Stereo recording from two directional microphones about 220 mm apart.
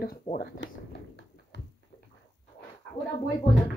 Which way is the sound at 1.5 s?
50° left (ahead or behind).